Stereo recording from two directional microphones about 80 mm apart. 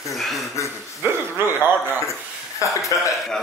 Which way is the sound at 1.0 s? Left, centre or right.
Right.